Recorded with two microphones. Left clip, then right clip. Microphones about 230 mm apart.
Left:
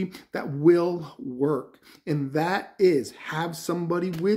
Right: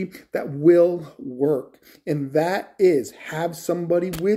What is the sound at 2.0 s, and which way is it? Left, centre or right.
Speech, left.